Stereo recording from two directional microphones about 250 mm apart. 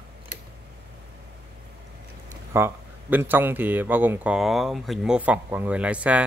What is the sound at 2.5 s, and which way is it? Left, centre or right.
Speech, centre.